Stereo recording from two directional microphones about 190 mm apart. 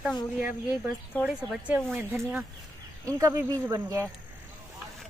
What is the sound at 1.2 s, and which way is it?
Speech, 10° left (ahead or behind).